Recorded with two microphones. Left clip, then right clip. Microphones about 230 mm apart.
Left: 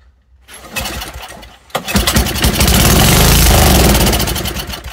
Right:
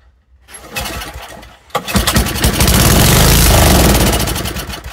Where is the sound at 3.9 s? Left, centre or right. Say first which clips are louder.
Even; centre.